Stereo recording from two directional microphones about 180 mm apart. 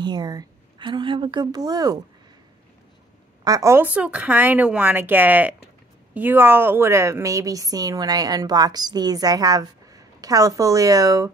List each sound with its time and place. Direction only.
0.0 s a woman's voice: 25° right (ahead or behind)
3.4 s a woman's voice: 15° right (ahead or behind)